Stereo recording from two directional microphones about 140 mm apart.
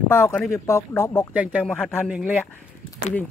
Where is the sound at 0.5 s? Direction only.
20° left (ahead or behind).